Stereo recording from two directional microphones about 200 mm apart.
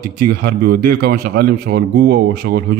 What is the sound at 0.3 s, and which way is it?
A man's voice, 50° right (ahead or behind).